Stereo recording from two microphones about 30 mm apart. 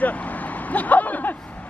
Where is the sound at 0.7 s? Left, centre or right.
Left.